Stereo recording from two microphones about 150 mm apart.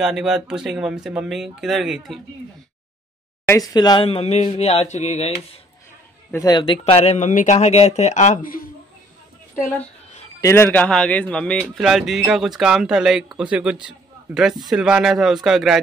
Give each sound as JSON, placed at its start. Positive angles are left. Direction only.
{"t": 0.0, "sound": "speech", "side_deg": -5}
{"t": 3.4, "sound": "speech", "side_deg": 25}
{"t": 4.0, "sound": "speech", "side_deg": 40}
{"t": 6.3, "sound": "speech", "side_deg": 25}
{"t": 6.8, "sound": "speech", "side_deg": 40}
{"t": 10.4, "sound": "a man's voice", "side_deg": 15}
{"t": 11.6, "sound": "speech", "side_deg": -5}
{"t": 13.8, "sound": "a sound", "side_deg": -5}
{"t": 14.7, "sound": "speech", "side_deg": -5}